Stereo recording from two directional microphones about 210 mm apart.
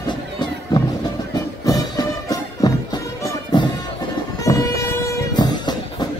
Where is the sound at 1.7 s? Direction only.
15° left (ahead or behind).